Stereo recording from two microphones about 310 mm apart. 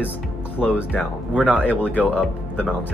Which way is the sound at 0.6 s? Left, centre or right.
Centre.